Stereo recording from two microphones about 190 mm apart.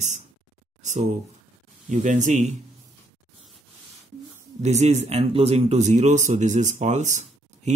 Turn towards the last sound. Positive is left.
turn(degrees=-40)  # may be behind; listen again after turning